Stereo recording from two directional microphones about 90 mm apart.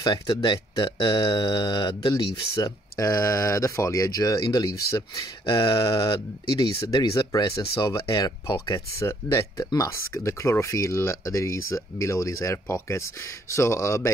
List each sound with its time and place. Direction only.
0.4 s speech: 55° left (ahead or behind)
2.5 s speech: 40° left (ahead or behind)
5.4 s speech: 55° left (ahead or behind); by 14.1 s 35° left (ahead or behind)